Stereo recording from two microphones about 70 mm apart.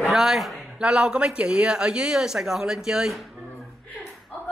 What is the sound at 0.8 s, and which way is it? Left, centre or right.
Speech, centre.